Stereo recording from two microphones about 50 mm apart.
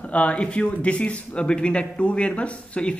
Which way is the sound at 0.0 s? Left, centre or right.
Left.